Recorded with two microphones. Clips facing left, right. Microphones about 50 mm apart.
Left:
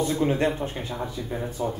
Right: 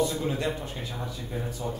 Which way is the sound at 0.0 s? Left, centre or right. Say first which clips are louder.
Left 4 dB; left.